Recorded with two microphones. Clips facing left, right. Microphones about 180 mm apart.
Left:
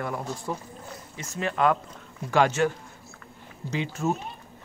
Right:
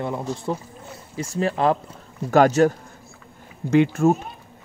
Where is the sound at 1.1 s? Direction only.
35° right (ahead or behind).